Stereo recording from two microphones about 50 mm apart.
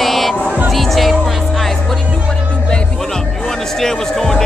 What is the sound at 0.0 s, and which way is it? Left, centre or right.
Music, centre.